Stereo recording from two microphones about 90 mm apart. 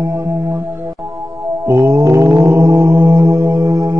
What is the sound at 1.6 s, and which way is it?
Music, 30° right (ahead or behind).